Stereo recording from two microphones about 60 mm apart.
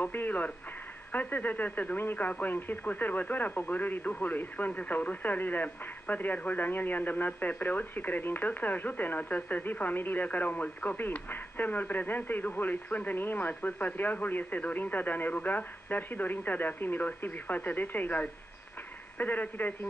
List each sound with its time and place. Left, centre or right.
0.0 s speech: left